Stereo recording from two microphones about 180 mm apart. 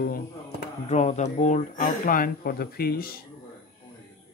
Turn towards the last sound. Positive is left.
turn(degrees=55)  # may be behind; listen again after turning